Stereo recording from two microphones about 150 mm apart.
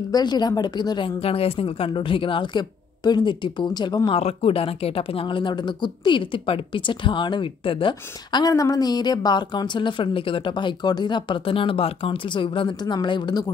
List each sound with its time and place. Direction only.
0.1 s a woman's voice: 30° left (ahead or behind)